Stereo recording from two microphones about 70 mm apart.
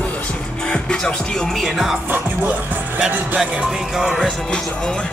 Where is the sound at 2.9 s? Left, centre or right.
Right.